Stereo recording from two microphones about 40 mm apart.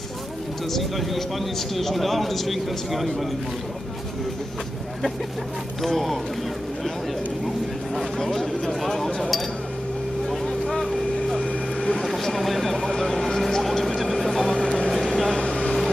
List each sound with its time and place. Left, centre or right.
0.7 s a man's voice: centre
5.8 s a man's voice: centre
7.4 s speech: centre
10.7 s a man's voice: centre
13.6 s vehicle: centre
15.4 s vehicle: left